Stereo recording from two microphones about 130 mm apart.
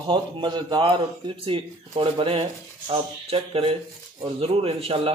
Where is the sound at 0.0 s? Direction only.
40° right (ahead or behind).